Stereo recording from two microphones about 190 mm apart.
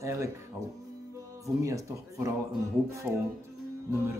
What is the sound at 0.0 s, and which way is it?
Music, 15° right (ahead or behind).